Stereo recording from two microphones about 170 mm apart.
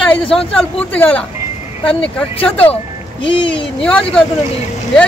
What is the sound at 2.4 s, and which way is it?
Speech, 10° left (ahead or behind).